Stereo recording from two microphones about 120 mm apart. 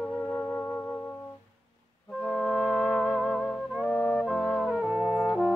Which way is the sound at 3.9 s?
15° left (ahead or behind).